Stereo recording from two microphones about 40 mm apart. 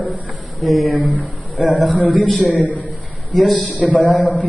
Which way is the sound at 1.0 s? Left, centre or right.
Left.